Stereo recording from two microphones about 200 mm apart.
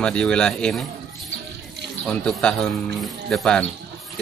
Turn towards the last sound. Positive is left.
turn(degrees=5)  # may be behind; listen again after turning